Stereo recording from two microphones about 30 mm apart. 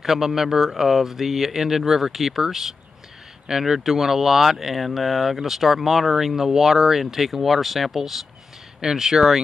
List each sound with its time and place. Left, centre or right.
0.0 s speech: centre
8.8 s speech: centre